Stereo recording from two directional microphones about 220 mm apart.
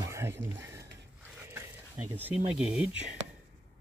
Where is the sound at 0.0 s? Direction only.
10° right (ahead or behind).